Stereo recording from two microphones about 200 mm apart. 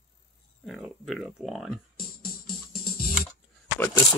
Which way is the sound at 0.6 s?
Centre (ahead or behind).